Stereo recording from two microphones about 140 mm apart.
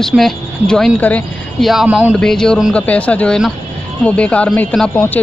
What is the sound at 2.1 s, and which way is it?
Speech, 5° left (ahead or behind).